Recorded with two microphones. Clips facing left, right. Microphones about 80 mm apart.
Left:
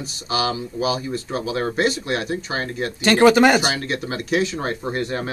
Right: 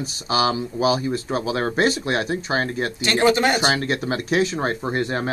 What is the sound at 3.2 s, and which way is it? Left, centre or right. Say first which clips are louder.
Speech: left 5 dB; left.